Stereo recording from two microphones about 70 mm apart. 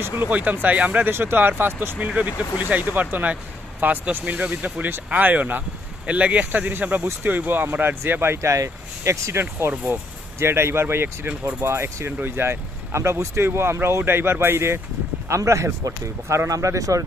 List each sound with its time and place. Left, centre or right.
0.0 s speech: right
2.0 s speech: centre; by 9.4 s right
9.4 s speech: right